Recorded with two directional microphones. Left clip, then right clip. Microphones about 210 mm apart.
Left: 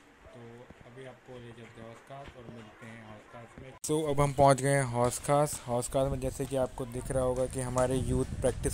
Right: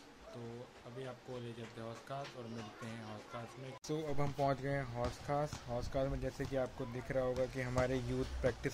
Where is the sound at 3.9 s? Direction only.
40° left (ahead or behind).